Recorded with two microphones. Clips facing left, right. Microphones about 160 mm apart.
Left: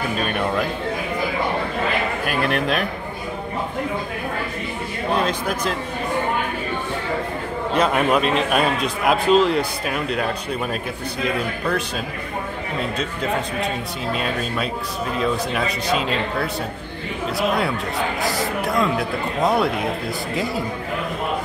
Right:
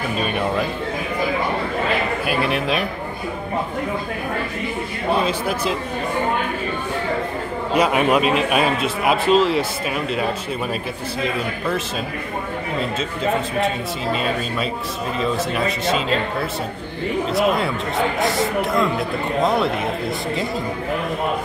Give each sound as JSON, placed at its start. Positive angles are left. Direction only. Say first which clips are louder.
{"t": 2.2, "sound": "a man's voice", "louder": "left 1 dB", "side_deg": -5}
{"t": 5.1, "sound": "speech", "louder": "right 1 dB", "side_deg": -5}
{"t": 7.7, "sound": "a man's voice", "louder": "right 2 dB", "side_deg": -10}
{"t": 14.1, "sound": "a man's voice", "louder": "even", "side_deg": 0}